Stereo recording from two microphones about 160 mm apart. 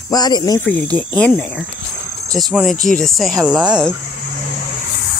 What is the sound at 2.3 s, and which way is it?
Speech, centre (ahead or behind).